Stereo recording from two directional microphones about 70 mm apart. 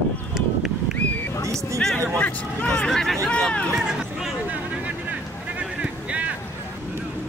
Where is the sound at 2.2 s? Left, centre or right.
Centre.